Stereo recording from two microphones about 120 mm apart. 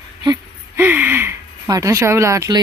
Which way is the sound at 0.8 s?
15° right (ahead or behind).